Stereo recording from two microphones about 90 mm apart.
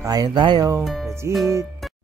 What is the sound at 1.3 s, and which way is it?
Speech, 30° right (ahead or behind).